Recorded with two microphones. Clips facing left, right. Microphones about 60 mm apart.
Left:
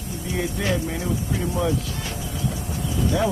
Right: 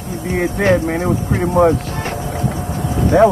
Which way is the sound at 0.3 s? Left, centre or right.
Right.